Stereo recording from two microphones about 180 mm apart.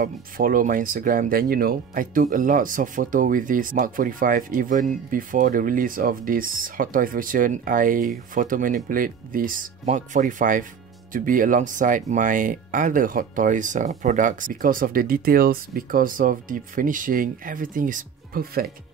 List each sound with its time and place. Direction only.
0.0 s speech: 50° right (ahead or behind)